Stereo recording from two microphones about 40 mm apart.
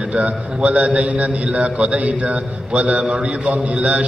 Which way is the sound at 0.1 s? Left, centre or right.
Right.